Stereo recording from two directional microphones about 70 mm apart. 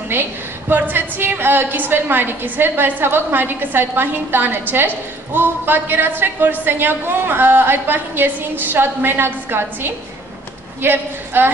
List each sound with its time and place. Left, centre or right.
0.1 s a woman's voice: right